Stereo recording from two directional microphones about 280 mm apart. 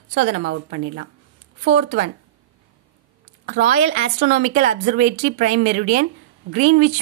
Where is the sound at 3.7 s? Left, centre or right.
Right.